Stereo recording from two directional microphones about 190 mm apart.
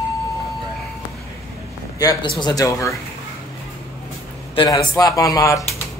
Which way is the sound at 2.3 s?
20° left (ahead or behind).